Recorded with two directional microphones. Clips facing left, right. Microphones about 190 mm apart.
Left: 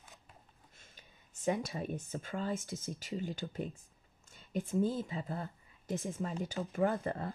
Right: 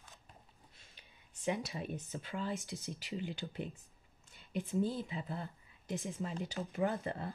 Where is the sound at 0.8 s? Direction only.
50° left (ahead or behind).